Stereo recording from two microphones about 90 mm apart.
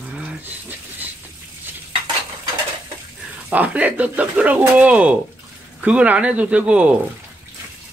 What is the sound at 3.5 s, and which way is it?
Speech, 15° right (ahead or behind).